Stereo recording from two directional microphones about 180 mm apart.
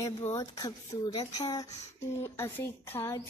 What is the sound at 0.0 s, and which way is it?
Speech, 15° left (ahead or behind).